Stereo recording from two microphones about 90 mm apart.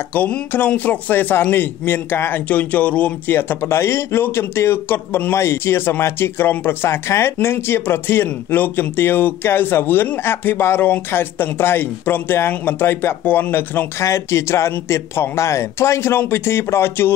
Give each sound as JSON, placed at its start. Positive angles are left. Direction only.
{"t": 0.1, "sound": "a man's voice", "side_deg": 20}